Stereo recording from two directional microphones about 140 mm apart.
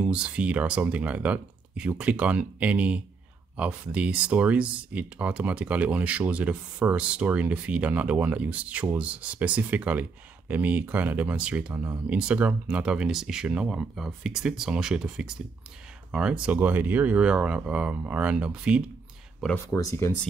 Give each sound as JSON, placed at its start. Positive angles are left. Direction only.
{"t": 0.0, "sound": "speech", "side_deg": -10}
{"t": 19.7, "sound": "speech", "side_deg": 20}